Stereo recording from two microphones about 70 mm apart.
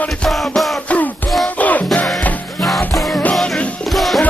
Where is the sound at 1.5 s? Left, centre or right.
Left.